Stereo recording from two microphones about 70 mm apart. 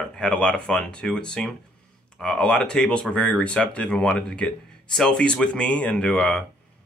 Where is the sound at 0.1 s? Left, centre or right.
Centre.